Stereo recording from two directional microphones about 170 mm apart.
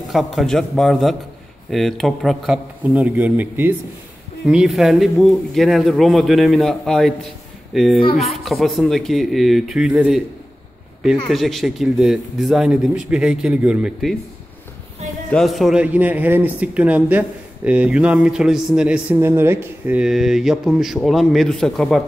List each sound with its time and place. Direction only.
0.1 s a man's voice: centre (ahead or behind)
11.2 s a man's voice: centre (ahead or behind)
15.3 s a man's voice: centre (ahead or behind)